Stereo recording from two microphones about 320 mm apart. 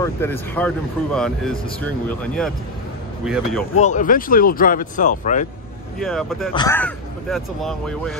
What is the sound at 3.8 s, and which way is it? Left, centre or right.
Speech, left.